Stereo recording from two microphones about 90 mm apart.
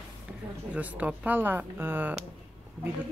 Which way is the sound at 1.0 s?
20° right (ahead or behind).